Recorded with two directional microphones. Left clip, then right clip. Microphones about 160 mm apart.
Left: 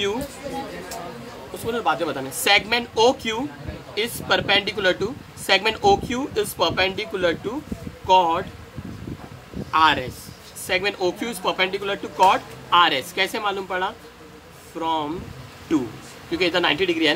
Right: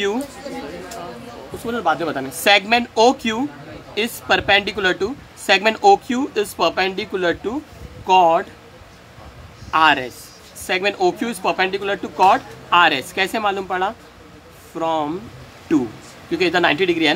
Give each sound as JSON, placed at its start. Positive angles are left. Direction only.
{"t": 1.7, "sound": "a woman's voice", "side_deg": -55}
{"t": 9.7, "sound": "a woman's voice", "side_deg": -65}
{"t": 16.3, "sound": "a woman's voice", "side_deg": -65}